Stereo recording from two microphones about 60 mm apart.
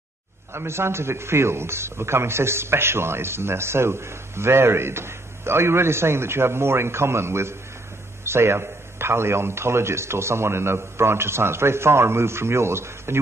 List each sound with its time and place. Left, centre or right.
0.5 s a man's voice: right